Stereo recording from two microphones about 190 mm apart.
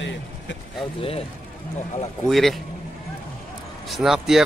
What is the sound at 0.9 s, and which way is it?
Speech, 30° left (ahead or behind).